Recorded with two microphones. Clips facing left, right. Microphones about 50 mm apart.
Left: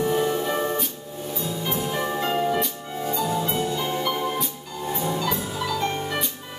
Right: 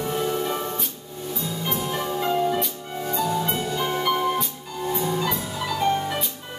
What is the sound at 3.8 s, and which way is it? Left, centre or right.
Music, centre.